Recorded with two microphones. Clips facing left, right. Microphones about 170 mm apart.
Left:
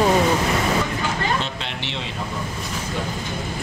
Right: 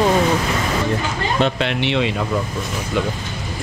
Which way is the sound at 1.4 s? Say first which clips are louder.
Right 10 dB; 65° right (ahead or behind).